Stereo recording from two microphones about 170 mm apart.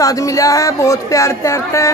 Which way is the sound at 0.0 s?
20° left (ahead or behind).